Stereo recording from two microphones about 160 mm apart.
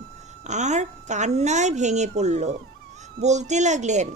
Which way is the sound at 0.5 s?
45° right (ahead or behind).